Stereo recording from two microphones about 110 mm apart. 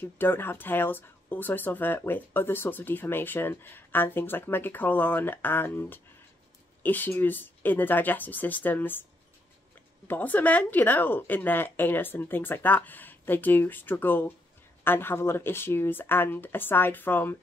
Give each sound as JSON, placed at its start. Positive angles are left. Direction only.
{"t": 0.0, "sound": "a woman's voice", "side_deg": 20}
{"t": 10.0, "sound": "a woman's voice", "side_deg": 15}